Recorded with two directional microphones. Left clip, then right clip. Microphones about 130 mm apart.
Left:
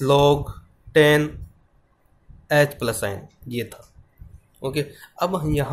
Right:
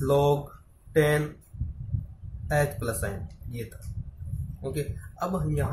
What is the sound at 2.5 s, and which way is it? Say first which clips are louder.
Speech: left 8 dB; 60° left (ahead or behind).